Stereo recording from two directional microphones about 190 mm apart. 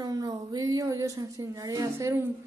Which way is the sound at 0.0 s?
20° right (ahead or behind).